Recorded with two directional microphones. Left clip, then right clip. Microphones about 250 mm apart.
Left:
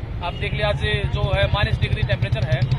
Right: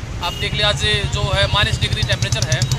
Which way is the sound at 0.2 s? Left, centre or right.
Centre.